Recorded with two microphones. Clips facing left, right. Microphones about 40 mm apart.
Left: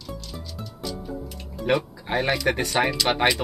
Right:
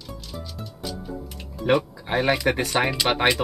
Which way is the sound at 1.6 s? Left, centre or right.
Centre.